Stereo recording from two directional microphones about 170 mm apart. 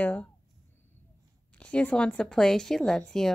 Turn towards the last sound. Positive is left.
turn(degrees=5)  # may be behind; listen again after turning